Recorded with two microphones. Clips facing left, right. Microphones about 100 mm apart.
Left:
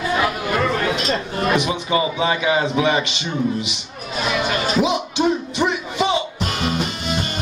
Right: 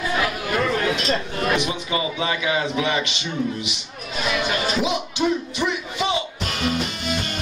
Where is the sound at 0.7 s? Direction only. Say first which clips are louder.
Left 1 dB; 25° left (ahead or behind).